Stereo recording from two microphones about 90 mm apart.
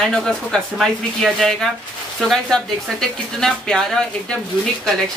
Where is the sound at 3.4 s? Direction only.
5° left (ahead or behind).